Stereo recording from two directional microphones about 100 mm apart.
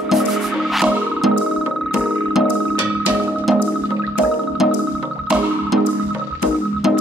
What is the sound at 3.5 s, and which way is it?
Music, centre (ahead or behind).